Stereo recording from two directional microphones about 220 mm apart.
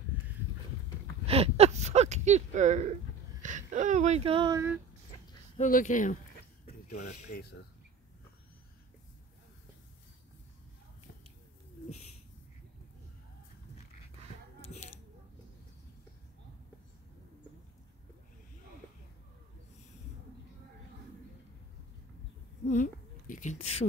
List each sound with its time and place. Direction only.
1.2 s a sound: 25° right (ahead or behind)
3.4 s speech: 35° right (ahead or behind); by 4.7 s 15° right (ahead or behind)
5.6 s speech: 35° left (ahead or behind)
11.9 s bird: 30° left (ahead or behind)
14.6 s a sound: 30° left (ahead or behind)
22.7 s speech: 35° left (ahead or behind)